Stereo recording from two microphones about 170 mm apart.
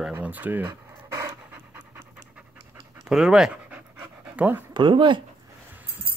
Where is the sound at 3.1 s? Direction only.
5° right (ahead or behind).